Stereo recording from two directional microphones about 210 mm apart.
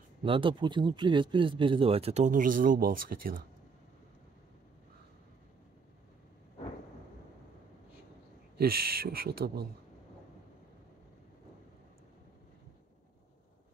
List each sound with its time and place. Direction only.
0.2 s speech: 25° right (ahead or behind); by 3.4 s 45° right (ahead or behind)
8.5 s speech: 45° right (ahead or behind)